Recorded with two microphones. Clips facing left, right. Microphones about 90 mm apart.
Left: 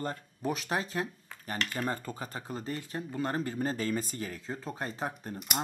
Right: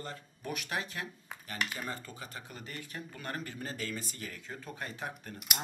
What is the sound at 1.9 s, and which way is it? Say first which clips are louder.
Speech: left 6 dB; 40° left (ahead or behind).